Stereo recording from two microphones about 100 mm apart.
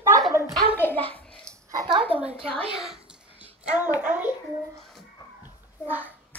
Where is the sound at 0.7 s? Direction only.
20° left (ahead or behind).